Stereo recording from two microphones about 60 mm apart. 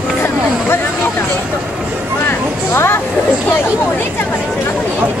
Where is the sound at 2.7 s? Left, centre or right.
Left.